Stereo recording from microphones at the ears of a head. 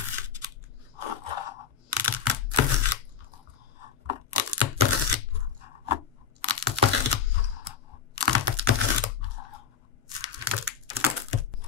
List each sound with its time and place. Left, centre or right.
0.0 s scissors: left
3.7 s tearing: left